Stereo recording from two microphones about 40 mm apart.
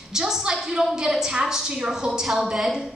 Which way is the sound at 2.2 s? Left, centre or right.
Centre.